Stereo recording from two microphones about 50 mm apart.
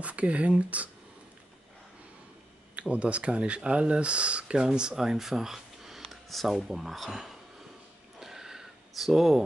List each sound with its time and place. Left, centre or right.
0.0 s speech: right
2.7 s speech: right; by 7.3 s centre
8.2 s a sound: centre